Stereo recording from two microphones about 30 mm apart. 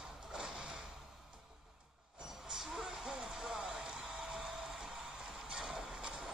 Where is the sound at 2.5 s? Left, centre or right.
Centre.